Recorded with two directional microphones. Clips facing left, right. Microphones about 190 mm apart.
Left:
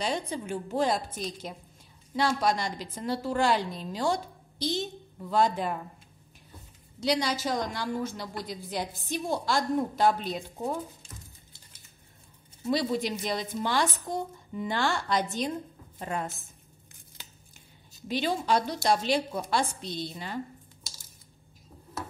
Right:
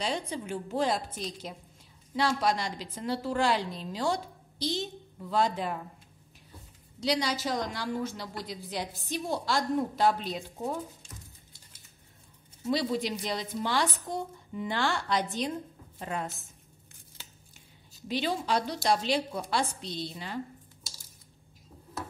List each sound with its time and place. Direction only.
0.0 s a woman's voice: 45° left (ahead or behind)
7.0 s a woman's voice: 50° left (ahead or behind)
12.6 s a woman's voice: 50° left (ahead or behind)
17.6 s a sound: 50° left (ahead or behind)
18.9 s a woman's voice: 50° left (ahead or behind)